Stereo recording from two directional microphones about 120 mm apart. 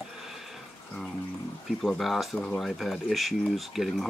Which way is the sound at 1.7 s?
Centre (ahead or behind).